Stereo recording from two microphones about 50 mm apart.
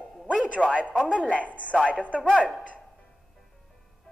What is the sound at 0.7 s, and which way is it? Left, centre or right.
Speech, right.